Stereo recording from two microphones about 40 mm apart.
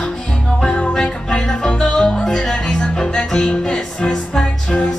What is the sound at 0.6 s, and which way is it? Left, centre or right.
Music, centre.